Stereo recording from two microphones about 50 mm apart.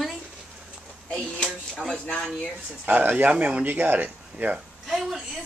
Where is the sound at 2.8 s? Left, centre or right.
Right.